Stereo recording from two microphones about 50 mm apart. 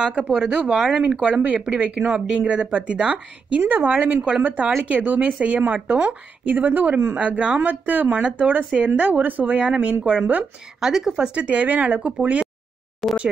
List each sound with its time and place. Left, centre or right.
0.0 s a woman's voice: right
6.4 s a woman's voice: right
10.8 s a woman's voice: centre
11.3 s a woman's voice: right
13.0 s speech: centre